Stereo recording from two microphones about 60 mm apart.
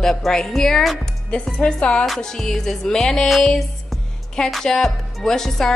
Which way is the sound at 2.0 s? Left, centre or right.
Centre.